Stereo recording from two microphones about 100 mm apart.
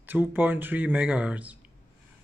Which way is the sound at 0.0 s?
20° right (ahead or behind).